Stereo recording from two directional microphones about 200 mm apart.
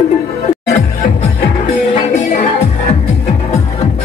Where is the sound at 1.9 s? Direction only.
35° left (ahead or behind).